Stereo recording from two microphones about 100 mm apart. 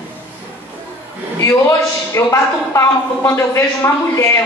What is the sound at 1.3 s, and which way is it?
A woman's voice, 30° left (ahead or behind).